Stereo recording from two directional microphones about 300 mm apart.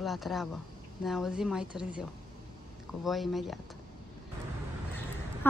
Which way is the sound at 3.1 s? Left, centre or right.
Centre.